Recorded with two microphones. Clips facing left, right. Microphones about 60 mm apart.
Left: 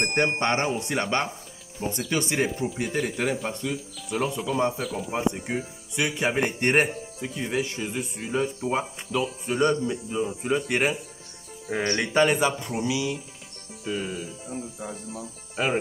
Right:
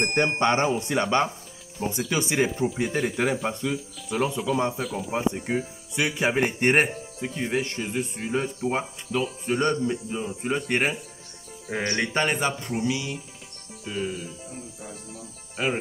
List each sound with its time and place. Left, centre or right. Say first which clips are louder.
0.0 s speech: right 1 dB; centre
7.6 s speech: right 1 dB; centre
7.9 s speech: right 2 dB; centre
11.8 s speech: even; centre
12.1 s speech: left 7 dB; centre
15.5 s speech: left 2 dB; centre